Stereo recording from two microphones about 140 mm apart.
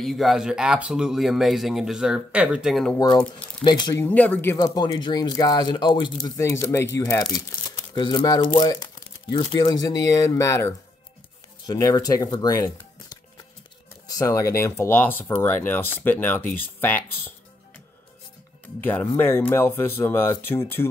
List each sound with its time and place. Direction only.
0.0 s speech: centre (ahead or behind)
3.6 s speech: 30° left (ahead or behind)
3.9 s speech: 15° left (ahead or behind)
4.6 s speech: 30° left (ahead or behind)
6.2 s speech: 20° left (ahead or behind)
16.4 s speech: 90° left
18.8 s speech: 15° left (ahead or behind)